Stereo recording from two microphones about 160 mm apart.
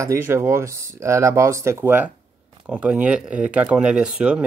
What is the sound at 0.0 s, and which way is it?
Speech, 15° right (ahead or behind).